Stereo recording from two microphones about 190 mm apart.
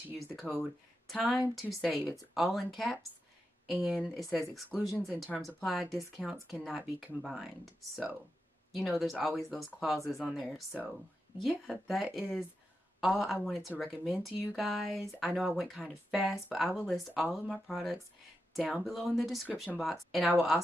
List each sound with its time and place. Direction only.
1.0 s speech: centre (ahead or behind)